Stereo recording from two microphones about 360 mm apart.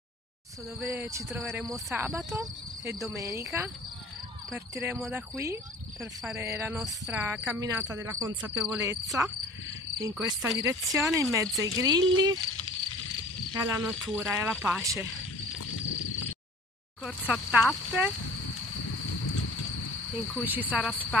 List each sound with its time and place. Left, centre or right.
0.7 s speech: centre
13.5 s cricket: centre
13.8 s speech: centre
15.6 s a sound: left
17.0 s speech: centre
20.4 s speech: centre